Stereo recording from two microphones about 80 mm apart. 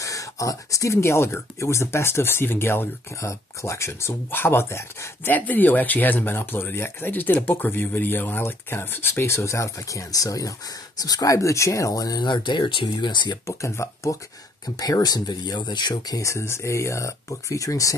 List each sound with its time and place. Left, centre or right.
0.0 s speech: left
5.3 s speech: left
12.3 s speech: left
13.5 s speech: left
14.8 s speech: left
16.2 s speech: left